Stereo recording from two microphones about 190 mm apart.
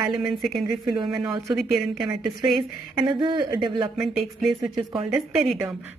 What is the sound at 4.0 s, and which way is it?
A woman's voice, centre (ahead or behind).